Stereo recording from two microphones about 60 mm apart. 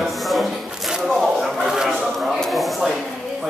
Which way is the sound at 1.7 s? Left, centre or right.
Centre.